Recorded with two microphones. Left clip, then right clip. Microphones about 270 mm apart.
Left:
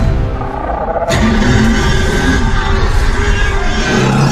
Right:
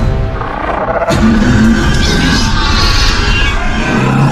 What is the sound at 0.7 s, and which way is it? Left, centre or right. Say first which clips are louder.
Music: right 3 dB; right.